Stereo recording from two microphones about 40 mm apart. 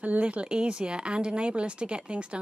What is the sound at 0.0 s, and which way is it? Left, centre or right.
Speech, right.